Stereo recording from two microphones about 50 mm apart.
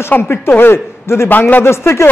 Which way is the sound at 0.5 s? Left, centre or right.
Left.